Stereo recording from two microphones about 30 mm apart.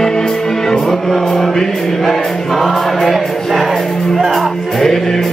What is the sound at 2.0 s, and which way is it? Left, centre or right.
Choir, centre.